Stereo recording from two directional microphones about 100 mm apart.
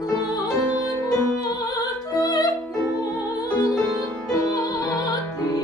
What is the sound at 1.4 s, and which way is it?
Music, 40° left (ahead or behind).